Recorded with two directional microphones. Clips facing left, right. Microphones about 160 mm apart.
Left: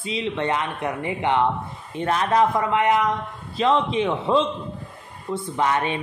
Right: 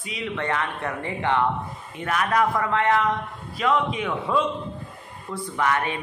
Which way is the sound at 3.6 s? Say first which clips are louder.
Left 3 dB; 30° left (ahead or behind).